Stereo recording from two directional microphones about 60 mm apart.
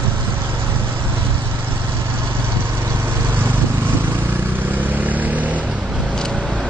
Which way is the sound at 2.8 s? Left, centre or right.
Right.